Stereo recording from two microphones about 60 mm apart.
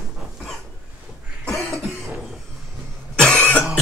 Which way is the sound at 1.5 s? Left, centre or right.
Centre.